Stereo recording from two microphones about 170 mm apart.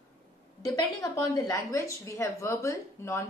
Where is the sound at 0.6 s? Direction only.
20° left (ahead or behind).